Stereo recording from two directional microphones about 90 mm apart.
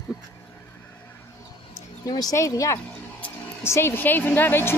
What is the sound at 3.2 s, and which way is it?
Music, 15° left (ahead or behind).